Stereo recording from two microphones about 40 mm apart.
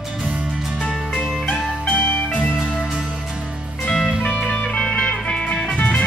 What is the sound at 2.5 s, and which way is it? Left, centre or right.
Music, right.